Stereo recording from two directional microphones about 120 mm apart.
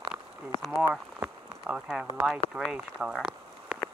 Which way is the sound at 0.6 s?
Centre (ahead or behind).